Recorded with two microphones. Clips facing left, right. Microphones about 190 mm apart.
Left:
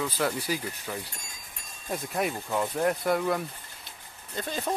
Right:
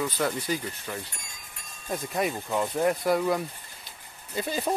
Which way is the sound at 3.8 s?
10° right (ahead or behind).